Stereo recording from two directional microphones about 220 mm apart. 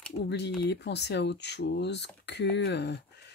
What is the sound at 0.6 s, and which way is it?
Speech, 50° left (ahead or behind).